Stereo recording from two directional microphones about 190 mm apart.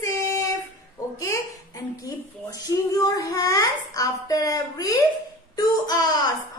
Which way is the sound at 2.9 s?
20° left (ahead or behind).